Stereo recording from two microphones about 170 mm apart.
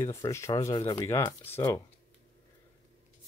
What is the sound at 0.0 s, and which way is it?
Speech, 15° left (ahead or behind).